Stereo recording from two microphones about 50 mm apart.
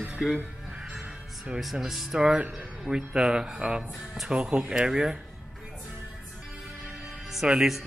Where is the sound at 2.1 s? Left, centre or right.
Centre.